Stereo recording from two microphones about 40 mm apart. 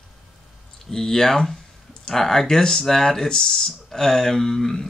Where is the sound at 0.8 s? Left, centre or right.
Centre.